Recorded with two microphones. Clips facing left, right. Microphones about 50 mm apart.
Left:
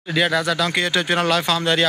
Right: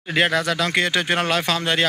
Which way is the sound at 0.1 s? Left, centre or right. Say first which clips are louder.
Even; right.